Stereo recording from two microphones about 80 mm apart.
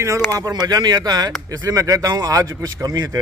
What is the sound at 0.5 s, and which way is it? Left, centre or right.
Speech, right.